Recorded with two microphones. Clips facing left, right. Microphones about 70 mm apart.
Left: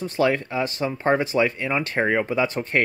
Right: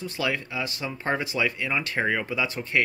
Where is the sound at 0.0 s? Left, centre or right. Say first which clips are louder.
Left 7 dB; left.